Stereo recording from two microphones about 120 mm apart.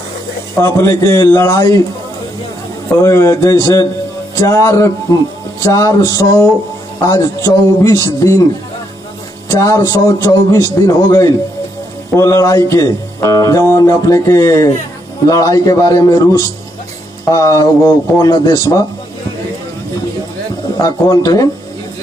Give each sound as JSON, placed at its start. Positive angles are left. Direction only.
{"t": 0.6, "sound": "speech", "side_deg": 20}
{"t": 3.0, "sound": "speech", "side_deg": 25}
{"t": 9.6, "sound": "a man's voice", "side_deg": 25}
{"t": 20.7, "sound": "speech", "side_deg": 30}